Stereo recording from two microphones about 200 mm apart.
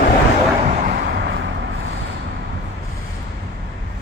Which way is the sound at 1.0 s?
55° right (ahead or behind).